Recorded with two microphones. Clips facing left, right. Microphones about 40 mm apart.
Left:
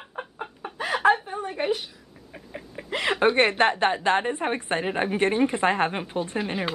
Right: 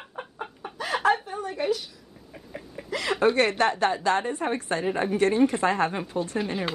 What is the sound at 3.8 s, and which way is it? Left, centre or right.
Speech, left.